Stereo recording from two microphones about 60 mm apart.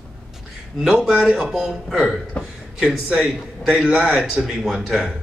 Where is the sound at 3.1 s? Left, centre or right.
Centre.